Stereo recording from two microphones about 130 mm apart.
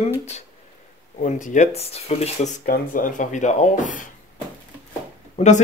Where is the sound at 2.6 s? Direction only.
90° left.